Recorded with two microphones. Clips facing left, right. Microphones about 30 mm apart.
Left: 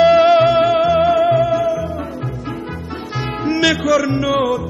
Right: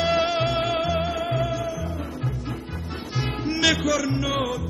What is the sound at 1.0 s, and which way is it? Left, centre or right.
Music, left.